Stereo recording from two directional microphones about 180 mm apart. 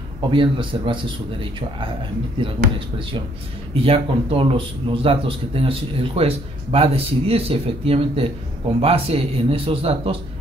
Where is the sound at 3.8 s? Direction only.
30° right (ahead or behind).